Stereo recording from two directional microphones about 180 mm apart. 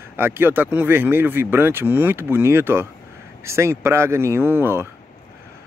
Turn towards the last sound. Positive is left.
turn(degrees=-10)  # may be behind; listen again after turning